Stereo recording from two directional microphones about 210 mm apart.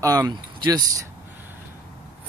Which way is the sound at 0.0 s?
15° right (ahead or behind).